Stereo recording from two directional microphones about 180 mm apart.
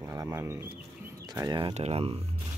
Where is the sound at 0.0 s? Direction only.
15° right (ahead or behind).